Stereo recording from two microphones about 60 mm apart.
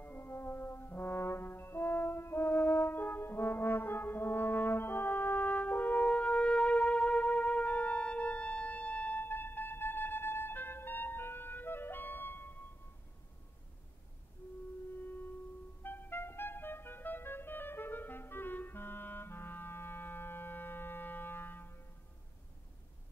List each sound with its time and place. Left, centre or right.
0.0 s brass instrument: left
6.0 s music: centre
9.2 s music: left
15.8 s music: left